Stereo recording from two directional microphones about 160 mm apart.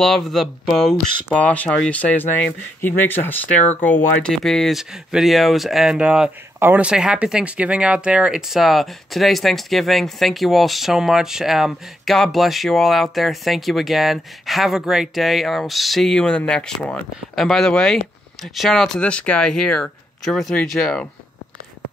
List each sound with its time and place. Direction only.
0.0 s speech: centre (ahead or behind)
3.8 s speech: 10° left (ahead or behind)